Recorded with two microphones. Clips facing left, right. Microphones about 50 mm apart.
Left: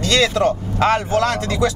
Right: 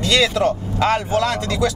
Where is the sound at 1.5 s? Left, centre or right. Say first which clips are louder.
Left 1 dB; left.